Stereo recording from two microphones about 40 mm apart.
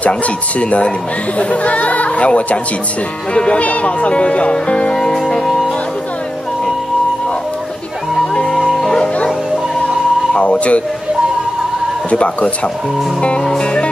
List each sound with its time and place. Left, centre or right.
0.6 s speech: left
5.3 s music: centre
8.6 s music: centre
10.3 s speech: left
12.1 s speech: left
13.4 s music: centre